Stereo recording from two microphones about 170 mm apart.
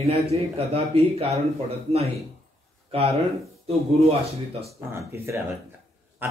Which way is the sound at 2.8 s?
35° right (ahead or behind).